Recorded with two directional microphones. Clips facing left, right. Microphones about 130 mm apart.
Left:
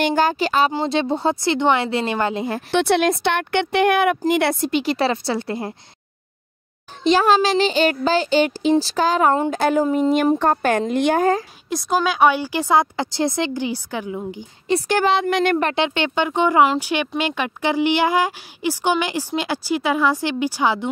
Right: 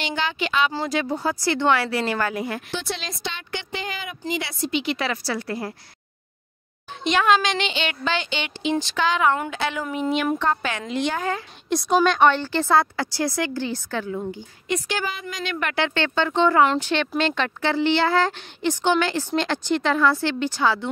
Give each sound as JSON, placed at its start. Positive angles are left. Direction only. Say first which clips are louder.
{"t": 0.0, "sound": "a child's voice", "louder": "left 8 dB", "side_deg": 45}
{"t": 0.7, "sound": "speech", "louder": "left 4 dB", "side_deg": 25}
{"t": 2.7, "sound": "speech", "louder": "left 13 dB", "side_deg": 65}
{"t": 4.2, "sound": "a woman's voice", "louder": "left 9 dB", "side_deg": 55}
{"t": 4.9, "sound": "speech", "louder": "left 6 dB", "side_deg": 30}
{"t": 7.0, "sound": "a child's voice", "louder": "left 4 dB", "side_deg": 35}
{"t": 11.7, "sound": "a woman's voice", "louder": "right 1 dB", "side_deg": 0}
{"t": 14.9, "sound": "speech", "louder": "left 11 dB", "side_deg": 65}
{"t": 15.7, "sound": "a woman's voice", "louder": "left 3 dB", "side_deg": 20}